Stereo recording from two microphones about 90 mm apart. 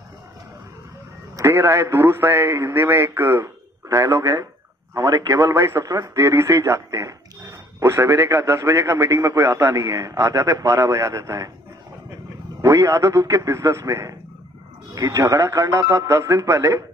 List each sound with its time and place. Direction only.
1.5 s a man's voice: 25° right (ahead or behind)
4.9 s speech: 40° right (ahead or behind)
5.4 s a man's voice: 25° right (ahead or behind)
12.6 s speech: 35° right (ahead or behind)